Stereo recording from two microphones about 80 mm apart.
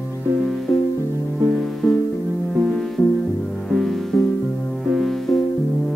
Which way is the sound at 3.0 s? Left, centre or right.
Left.